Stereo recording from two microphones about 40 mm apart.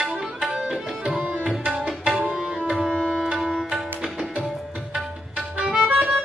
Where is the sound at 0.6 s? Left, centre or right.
Centre.